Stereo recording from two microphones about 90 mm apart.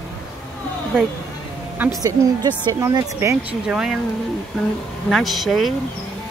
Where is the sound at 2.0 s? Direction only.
50° right (ahead or behind).